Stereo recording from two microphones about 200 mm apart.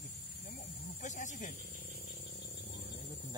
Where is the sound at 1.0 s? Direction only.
40° left (ahead or behind).